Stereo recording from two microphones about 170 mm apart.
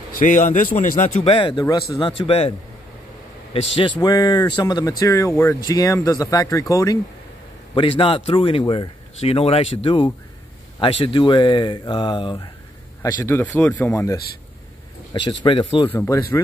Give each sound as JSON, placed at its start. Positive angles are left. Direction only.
{"t": 0.2, "sound": "a man's voice", "side_deg": 50}
{"t": 1.2, "sound": "speech", "side_deg": 30}
{"t": 3.5, "sound": "speech", "side_deg": 35}
{"t": 4.0, "sound": "speech", "side_deg": 25}
{"t": 7.7, "sound": "speech", "side_deg": 30}
{"t": 13.0, "sound": "speech", "side_deg": 15}
{"t": 15.4, "sound": "speech", "side_deg": 30}
{"t": 15.9, "sound": "speech", "side_deg": 15}